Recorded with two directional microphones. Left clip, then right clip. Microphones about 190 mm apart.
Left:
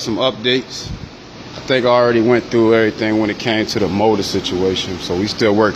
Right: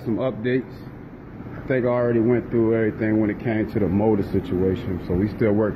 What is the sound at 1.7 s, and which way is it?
Speech, 20° left (ahead or behind).